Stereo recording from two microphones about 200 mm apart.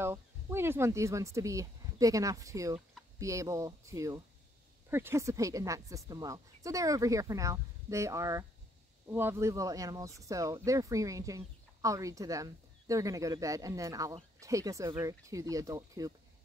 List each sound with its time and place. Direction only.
0.0 s speech: 10° right (ahead or behind)